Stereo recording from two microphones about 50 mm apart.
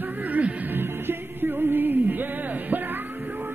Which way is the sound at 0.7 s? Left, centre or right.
Right.